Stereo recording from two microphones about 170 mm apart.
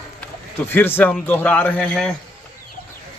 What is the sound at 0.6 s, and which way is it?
Speech, 10° left (ahead or behind).